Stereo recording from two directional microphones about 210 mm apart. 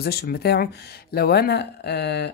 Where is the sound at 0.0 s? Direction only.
50° left (ahead or behind).